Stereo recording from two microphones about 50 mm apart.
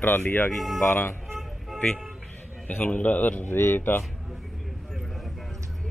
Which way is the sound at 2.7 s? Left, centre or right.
Left.